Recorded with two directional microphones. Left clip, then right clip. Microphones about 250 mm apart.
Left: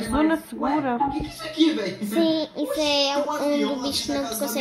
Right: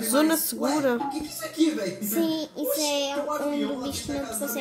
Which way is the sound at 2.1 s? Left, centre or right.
Left.